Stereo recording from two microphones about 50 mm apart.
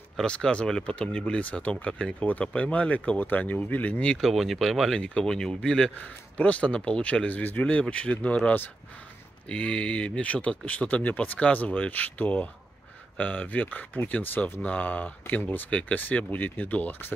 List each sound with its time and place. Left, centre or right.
0.2 s speech: centre
3.2 s speech: left
4.2 s speech: centre
5.0 s speech: centre
5.9 s speech: left